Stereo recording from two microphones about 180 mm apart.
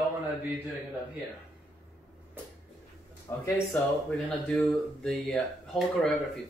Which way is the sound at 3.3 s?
15° left (ahead or behind).